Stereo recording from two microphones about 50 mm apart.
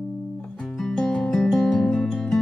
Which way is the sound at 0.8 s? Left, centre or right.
Centre.